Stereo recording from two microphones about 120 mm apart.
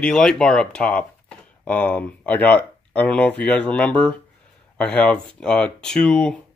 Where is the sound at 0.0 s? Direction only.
5° left (ahead or behind).